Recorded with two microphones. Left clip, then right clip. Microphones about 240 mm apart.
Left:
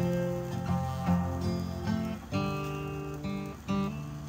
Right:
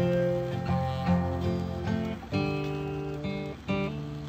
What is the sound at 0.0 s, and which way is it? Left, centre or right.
Music, centre.